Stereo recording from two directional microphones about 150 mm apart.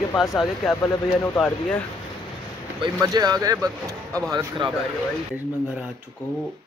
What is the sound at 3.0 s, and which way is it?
Speech, 25° right (ahead or behind).